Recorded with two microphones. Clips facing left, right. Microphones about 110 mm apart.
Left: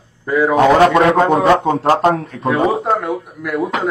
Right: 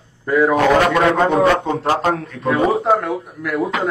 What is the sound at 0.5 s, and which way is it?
A man's voice, 30° left (ahead or behind).